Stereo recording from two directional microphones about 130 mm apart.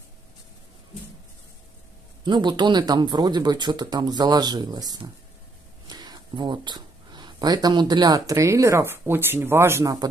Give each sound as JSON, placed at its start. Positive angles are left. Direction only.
{"t": 2.2, "sound": "speech", "side_deg": -35}